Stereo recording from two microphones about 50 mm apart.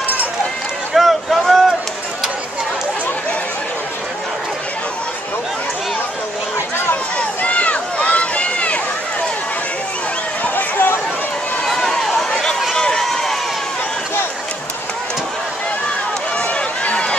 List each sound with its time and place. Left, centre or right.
0.9 s vehicle: centre
7.2 s run: left
10.4 s a sound: left
11.6 s run: centre
16.3 s run: left